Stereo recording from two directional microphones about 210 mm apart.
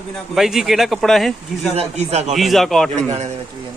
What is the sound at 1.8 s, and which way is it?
Speech, 30° right (ahead or behind).